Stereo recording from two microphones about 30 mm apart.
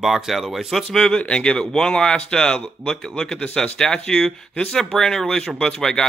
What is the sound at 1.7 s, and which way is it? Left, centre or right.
Speech, left.